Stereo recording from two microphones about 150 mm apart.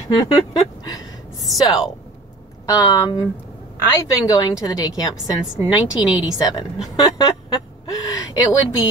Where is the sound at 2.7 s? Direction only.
25° left (ahead or behind).